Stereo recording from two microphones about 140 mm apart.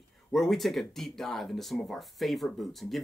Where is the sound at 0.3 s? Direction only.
Centre (ahead or behind).